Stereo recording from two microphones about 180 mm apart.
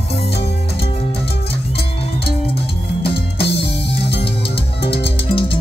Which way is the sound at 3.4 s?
65° left (ahead or behind).